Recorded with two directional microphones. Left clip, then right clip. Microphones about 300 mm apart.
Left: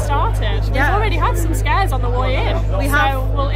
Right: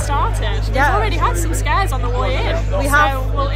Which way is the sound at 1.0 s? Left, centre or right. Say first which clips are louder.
Even; centre.